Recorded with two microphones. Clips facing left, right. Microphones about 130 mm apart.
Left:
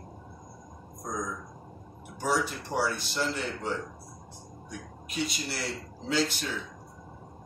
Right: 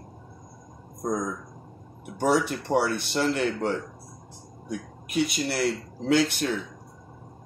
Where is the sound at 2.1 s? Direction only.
60° right (ahead or behind).